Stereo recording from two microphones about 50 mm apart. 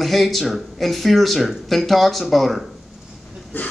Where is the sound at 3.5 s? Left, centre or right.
Left.